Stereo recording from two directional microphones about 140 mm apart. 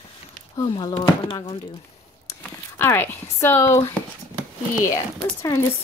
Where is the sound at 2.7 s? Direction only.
15° left (ahead or behind).